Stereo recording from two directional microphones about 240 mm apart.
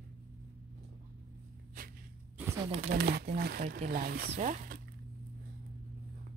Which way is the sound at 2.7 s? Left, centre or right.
Right.